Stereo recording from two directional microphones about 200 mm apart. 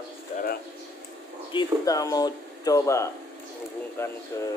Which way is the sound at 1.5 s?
15° left (ahead or behind).